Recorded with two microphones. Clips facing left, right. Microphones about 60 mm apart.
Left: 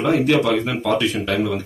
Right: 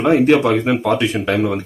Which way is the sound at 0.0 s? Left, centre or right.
Right.